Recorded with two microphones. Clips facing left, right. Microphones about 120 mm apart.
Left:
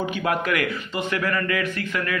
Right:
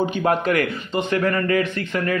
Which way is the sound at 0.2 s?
35° right (ahead or behind).